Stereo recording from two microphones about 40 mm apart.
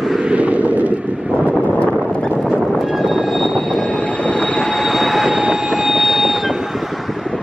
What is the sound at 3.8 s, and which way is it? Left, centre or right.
Train, left.